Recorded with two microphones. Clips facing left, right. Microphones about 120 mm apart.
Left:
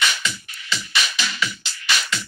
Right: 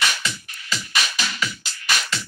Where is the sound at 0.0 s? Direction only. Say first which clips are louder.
Left 1 dB; 40° right (ahead or behind).